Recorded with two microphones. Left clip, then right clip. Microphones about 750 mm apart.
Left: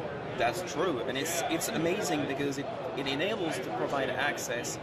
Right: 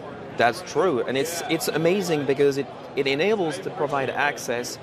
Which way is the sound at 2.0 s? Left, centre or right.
Right.